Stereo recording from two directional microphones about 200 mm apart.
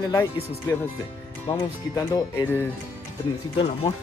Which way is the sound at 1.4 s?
15° left (ahead or behind).